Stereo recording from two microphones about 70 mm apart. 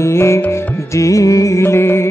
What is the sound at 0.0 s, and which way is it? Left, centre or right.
Music, left.